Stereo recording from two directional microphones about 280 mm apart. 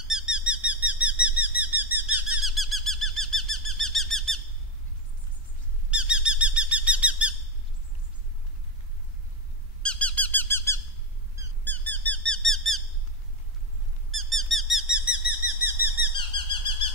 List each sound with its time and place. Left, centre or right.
0.0 s squeak: centre
2.0 s a sound: right
2.3 s bird: centre
5.9 s bird: centre
9.8 s squeak: centre
14.1 s squeak: centre
15.0 s bird: centre
16.2 s bird: centre